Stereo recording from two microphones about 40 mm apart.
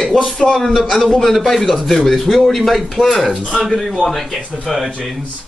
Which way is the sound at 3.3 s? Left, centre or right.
Centre.